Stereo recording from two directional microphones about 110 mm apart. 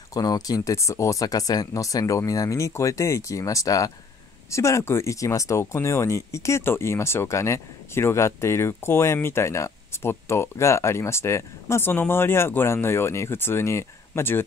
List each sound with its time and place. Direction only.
0.1 s speech: 35° left (ahead or behind)